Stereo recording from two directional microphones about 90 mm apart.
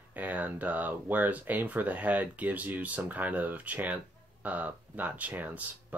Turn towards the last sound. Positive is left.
turn(degrees=-15)  # may be behind; listen again after turning